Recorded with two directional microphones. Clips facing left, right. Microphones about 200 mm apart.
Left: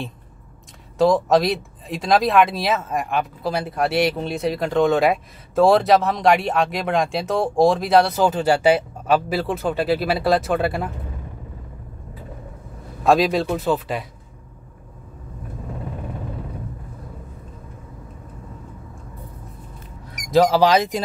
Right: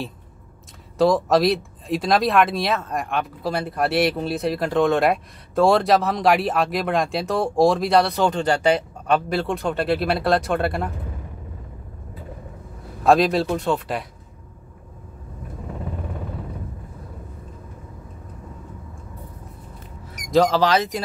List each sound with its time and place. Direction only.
0.9 s speech: centre (ahead or behind)
13.0 s speech: centre (ahead or behind)
20.2 s speech: 5° left (ahead or behind)